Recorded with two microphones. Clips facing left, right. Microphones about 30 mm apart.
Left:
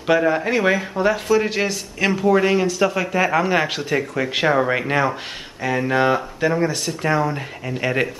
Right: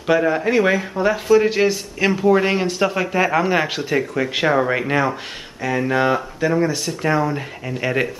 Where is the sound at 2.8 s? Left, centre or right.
Centre.